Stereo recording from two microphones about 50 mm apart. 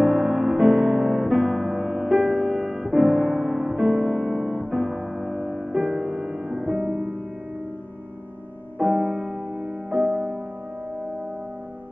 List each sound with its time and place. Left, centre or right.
0.0 s music: centre
8.7 s music: centre